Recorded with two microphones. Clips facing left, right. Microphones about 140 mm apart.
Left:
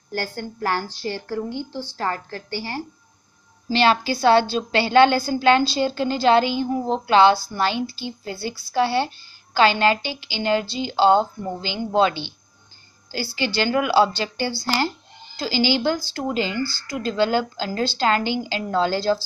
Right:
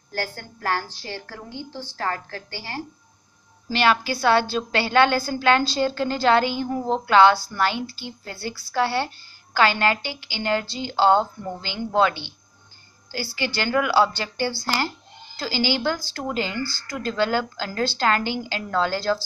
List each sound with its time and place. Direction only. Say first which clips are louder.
0.1 s speech: left 3 dB; 20° left (ahead or behind)
3.6 s speech: left 2 dB; 30° left (ahead or behind)